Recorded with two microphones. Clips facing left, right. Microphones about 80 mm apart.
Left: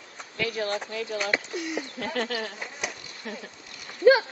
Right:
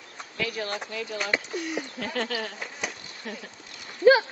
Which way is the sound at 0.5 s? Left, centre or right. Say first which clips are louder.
Left 5 dB; left.